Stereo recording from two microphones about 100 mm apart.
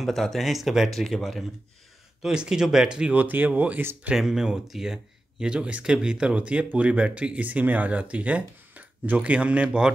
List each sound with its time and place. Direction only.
0.0 s speech: centre (ahead or behind); by 4.2 s 15° right (ahead or behind)
4.2 s speech: 5° right (ahead or behind)